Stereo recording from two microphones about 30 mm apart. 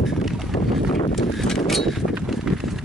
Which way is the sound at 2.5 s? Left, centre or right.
Centre.